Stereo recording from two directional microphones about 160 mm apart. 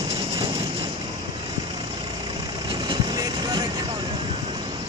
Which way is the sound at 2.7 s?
30° right (ahead or behind).